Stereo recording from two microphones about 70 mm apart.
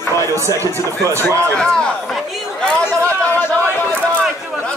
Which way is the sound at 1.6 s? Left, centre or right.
Centre.